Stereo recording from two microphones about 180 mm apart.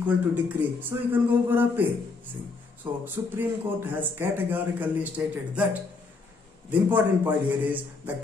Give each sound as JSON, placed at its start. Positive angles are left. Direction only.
{"t": 0.0, "sound": "a man's voice", "side_deg": -10}
{"t": 2.8, "sound": "music", "side_deg": -20}
{"t": 3.3, "sound": "a man's voice", "side_deg": -10}